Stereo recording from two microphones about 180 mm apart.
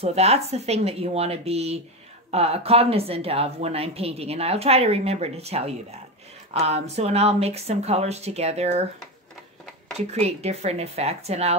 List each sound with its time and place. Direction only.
0.0 s speech: 35° right (ahead or behind)
9.9 s speech: 35° right (ahead or behind)